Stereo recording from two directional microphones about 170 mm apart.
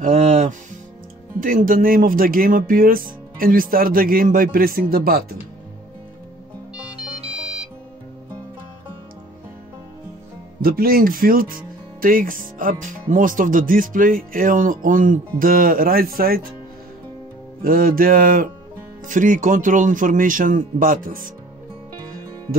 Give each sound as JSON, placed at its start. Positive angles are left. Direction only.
{"t": 0.0, "sound": "speech", "side_deg": -45}
{"t": 7.3, "sound": "music", "side_deg": -5}
{"t": 10.6, "sound": "speech", "side_deg": -60}
{"t": 17.6, "sound": "speech", "side_deg": -60}